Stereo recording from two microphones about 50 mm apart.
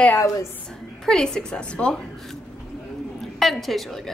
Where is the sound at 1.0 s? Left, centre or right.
Centre.